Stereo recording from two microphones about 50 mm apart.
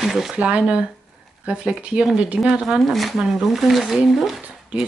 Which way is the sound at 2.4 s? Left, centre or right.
Centre.